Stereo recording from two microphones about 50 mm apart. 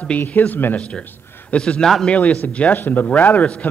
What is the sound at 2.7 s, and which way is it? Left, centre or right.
Speech, left.